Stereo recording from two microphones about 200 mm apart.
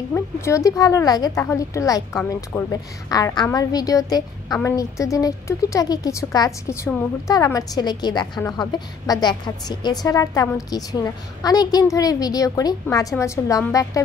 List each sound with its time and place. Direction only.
0.1 s a woman's voice: 15° left (ahead or behind)